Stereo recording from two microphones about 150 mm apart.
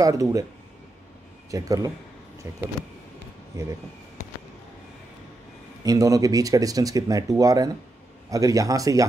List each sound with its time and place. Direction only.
0.0 s speech: 25° right (ahead or behind)
1.5 s speech: 20° right (ahead or behind)
5.9 s speech: 25° right (ahead or behind)